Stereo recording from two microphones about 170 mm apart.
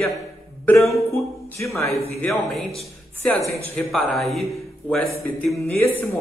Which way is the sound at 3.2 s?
10° left (ahead or behind).